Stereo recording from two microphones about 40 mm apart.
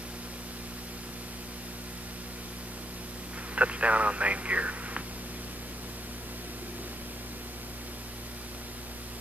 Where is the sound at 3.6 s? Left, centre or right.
Right.